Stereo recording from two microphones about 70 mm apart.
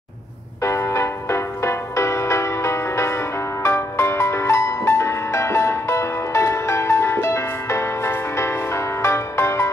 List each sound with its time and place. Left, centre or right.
0.7 s music: left